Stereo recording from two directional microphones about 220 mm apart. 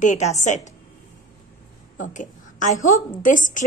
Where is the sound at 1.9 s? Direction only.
35° left (ahead or behind).